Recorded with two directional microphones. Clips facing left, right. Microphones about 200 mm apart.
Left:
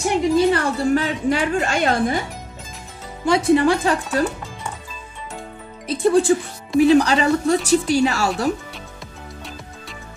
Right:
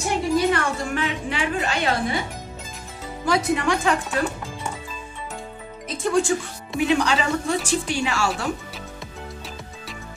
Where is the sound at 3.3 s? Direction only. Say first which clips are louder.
Left 6 dB; 30° left (ahead or behind).